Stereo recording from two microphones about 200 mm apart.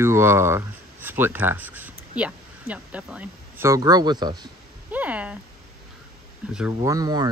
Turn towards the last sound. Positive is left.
turn(degrees=-20)  # may be behind; listen again after turning